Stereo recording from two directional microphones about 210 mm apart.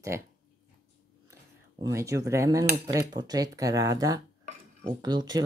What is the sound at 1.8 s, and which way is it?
Speech, 15° right (ahead or behind).